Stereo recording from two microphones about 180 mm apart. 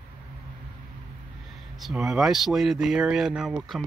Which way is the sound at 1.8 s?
Centre (ahead or behind).